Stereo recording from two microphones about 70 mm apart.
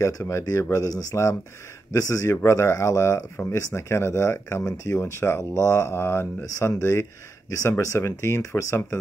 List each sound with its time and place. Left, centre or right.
0.0 s speech: left
4.6 s speech: left
5.4 s mantra: left
6.8 s speech: left